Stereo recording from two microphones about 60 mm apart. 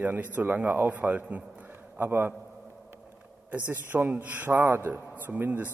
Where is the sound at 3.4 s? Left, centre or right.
Right.